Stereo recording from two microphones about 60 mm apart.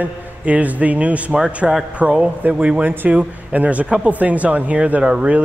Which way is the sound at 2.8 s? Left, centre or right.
Right.